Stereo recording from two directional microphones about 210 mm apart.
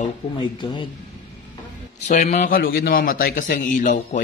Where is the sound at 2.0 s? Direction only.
35° left (ahead or behind).